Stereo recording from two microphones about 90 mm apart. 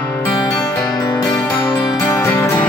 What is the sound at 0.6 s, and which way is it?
Music, 25° left (ahead or behind).